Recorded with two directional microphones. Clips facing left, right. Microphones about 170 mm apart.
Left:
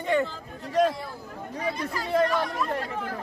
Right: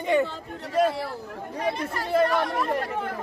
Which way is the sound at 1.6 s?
60° right (ahead or behind).